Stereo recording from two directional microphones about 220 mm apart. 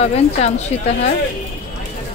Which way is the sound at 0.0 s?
30° left (ahead or behind).